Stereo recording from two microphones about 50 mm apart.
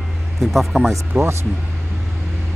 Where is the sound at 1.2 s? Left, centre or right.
Right.